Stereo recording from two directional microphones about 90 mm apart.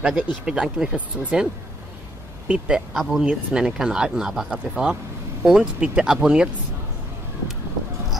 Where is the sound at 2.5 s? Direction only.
15° right (ahead or behind).